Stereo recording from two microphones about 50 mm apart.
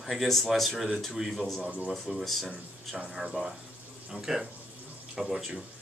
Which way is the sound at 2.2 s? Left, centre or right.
Centre.